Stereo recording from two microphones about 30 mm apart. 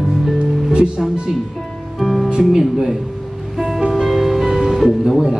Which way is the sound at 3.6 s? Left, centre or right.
Right.